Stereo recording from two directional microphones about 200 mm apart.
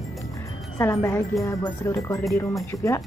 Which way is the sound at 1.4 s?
15° left (ahead or behind).